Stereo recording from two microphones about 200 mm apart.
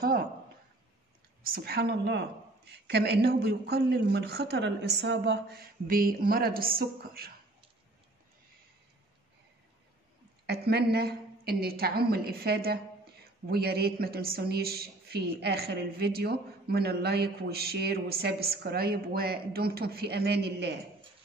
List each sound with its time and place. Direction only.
1.4 s a woman's voice: 50° right (ahead or behind)
10.4 s a woman's voice: 55° right (ahead or behind)